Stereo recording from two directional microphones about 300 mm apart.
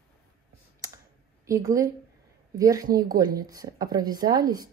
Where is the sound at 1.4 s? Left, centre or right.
Centre.